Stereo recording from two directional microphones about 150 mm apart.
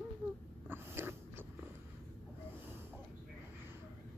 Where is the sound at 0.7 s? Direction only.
15° right (ahead or behind).